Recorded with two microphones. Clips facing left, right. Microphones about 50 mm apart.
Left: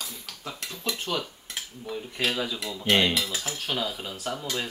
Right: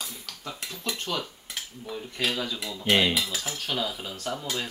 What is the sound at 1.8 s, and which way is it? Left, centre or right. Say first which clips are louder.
Cutlery: left 1 dB; centre.